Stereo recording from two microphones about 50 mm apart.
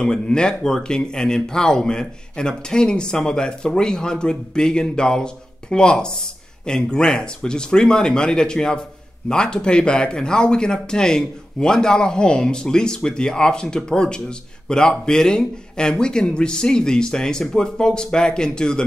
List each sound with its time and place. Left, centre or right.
0.0 s speech: centre